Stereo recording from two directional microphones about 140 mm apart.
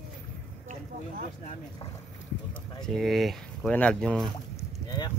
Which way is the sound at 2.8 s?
Centre (ahead or behind).